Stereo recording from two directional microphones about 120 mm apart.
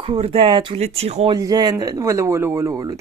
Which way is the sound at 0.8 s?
60° right (ahead or behind).